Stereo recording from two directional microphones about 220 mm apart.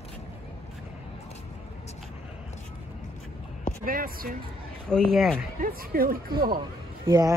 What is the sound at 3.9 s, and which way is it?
Speech, 40° right (ahead or behind).